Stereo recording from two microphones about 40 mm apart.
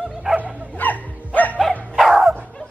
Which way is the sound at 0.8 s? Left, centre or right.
Left.